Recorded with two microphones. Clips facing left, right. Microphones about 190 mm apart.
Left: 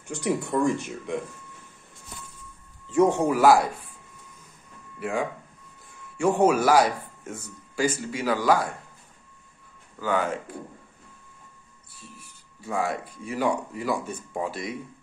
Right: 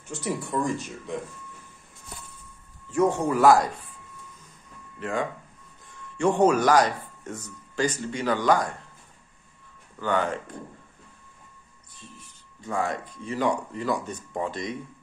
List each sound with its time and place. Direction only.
0.1 s speech: 15° left (ahead or behind)
2.9 s speech: 15° left (ahead or behind)
3.3 s speech: 5° left (ahead or behind)
5.0 s speech: 10° left (ahead or behind)
9.9 s speech: 5° left (ahead or behind)
12.0 s speech: 10° left (ahead or behind)